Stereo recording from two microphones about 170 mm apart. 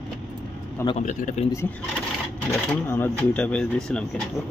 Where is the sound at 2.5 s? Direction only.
15° left (ahead or behind).